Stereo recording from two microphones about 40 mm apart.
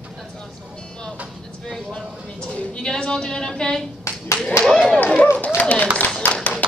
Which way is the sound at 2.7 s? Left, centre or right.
Centre.